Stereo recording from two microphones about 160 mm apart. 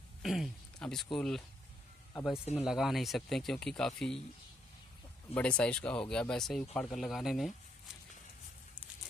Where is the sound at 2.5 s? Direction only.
5° right (ahead or behind).